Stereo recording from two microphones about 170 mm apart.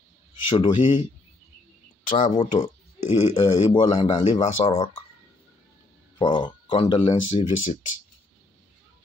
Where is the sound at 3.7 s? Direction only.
30° left (ahead or behind).